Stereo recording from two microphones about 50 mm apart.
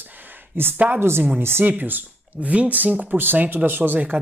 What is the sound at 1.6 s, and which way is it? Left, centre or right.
Speech, right.